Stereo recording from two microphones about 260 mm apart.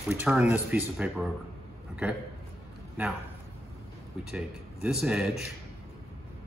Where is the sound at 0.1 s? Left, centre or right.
Centre.